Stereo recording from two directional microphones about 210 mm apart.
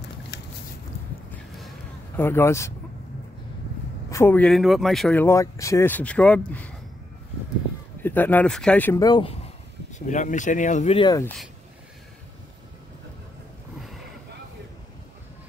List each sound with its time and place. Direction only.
2.1 s speech: 10° left (ahead or behind)
4.1 s speech: 10° left (ahead or behind)
8.0 s speech: 10° left (ahead or behind)
9.0 s speech: 25° left (ahead or behind)
11.0 s speech: 20° left (ahead or behind)